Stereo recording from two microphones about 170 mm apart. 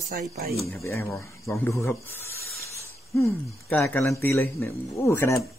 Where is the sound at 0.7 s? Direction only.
15° left (ahead or behind).